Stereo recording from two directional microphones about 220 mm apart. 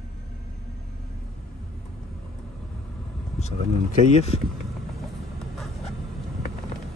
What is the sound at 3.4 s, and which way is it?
Speech, 30° left (ahead or behind).